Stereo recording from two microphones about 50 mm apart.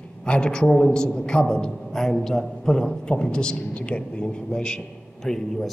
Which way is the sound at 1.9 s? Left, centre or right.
Centre.